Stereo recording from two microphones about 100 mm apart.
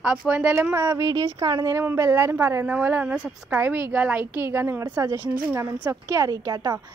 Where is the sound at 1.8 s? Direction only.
25° right (ahead or behind); by 6.7 s 40° right (ahead or behind).